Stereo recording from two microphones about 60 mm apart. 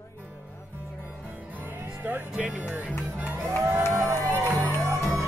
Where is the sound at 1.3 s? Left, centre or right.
Right.